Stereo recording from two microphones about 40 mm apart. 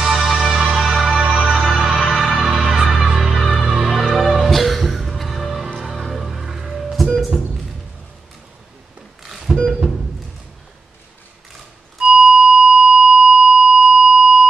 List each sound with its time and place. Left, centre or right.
0.0 s music: centre
1.2 s music: right; by 7.2 s centre
9.2 s organ: centre
9.7 s music: centre
12.0 s a sound: right